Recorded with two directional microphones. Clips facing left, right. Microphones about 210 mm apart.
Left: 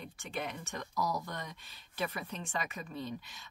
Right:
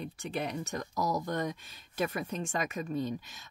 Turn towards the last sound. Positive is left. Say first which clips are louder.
# right 7 dB
turn(degrees=-45)  # may be behind; listen again after turning